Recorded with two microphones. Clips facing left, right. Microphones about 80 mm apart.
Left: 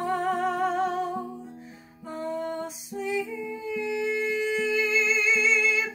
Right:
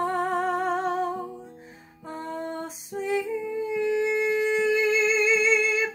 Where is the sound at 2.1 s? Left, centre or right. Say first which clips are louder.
Left 2 dB; right.